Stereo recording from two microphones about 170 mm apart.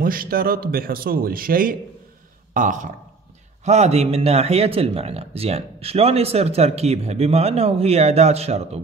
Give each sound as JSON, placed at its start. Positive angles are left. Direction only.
{"t": 0.0, "sound": "a man's voice", "side_deg": -55}